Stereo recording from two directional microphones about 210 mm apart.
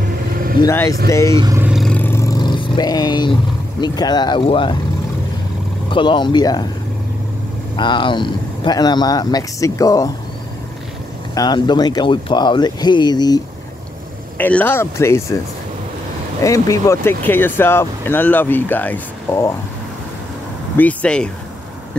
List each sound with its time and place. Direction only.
0.6 s speech: 15° left (ahead or behind)
1.3 s speech: 15° right (ahead or behind)
1.7 s vehicle: centre (ahead or behind); by 3.3 s 20° left (ahead or behind)
3.8 s speech: 20° left (ahead or behind)
5.9 s speech: 25° left (ahead or behind)
7.7 s speech: 20° left (ahead or behind)
11.3 s speech: 20° left (ahead or behind)
14.4 s speech: 10° left (ahead or behind)
16.4 s speech: 15° left (ahead or behind)
20.7 s speech: 5° left (ahead or behind)